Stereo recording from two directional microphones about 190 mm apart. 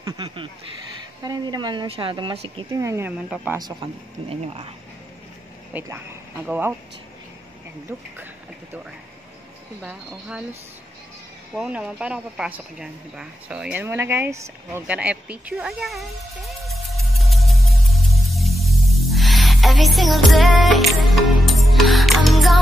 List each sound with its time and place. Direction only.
0.0 s speech: 20° right (ahead or behind)
2.8 s speech: 15° right (ahead or behind)
4.3 s speech: 30° right (ahead or behind)
5.7 s speech: 10° right (ahead or behind)
9.8 s speech: 5° right (ahead or behind)
11.5 s a sound: 5° right (ahead or behind)